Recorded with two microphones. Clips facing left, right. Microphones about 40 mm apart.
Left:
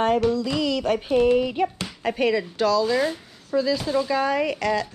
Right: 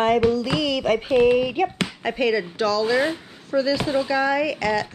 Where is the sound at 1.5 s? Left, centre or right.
Right.